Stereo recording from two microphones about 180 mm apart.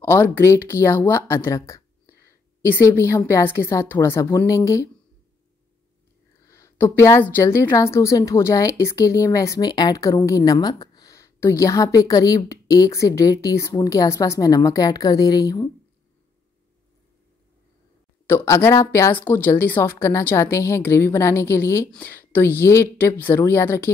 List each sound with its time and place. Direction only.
0.0 s a woman's voice: 10° left (ahead or behind)
6.4 s a woman's voice: 15° left (ahead or behind)
18.2 s a woman's voice: 15° left (ahead or behind)